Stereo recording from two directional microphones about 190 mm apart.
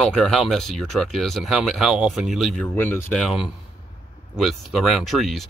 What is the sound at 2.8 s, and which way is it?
Speech, 10° left (ahead or behind).